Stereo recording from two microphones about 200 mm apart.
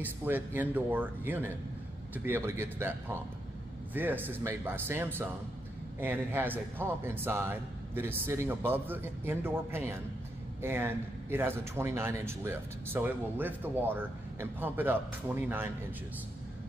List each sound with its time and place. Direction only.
0.0 s a man's voice: 10° right (ahead or behind)